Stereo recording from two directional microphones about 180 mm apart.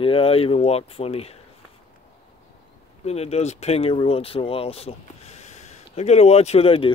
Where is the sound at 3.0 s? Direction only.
35° left (ahead or behind).